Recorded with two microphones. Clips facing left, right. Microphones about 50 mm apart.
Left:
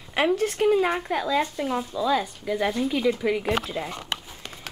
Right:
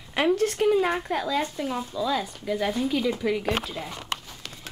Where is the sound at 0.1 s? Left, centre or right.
Centre.